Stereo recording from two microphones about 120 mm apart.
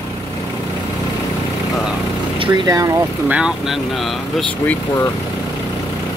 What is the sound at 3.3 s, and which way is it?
Speech, 5° right (ahead or behind).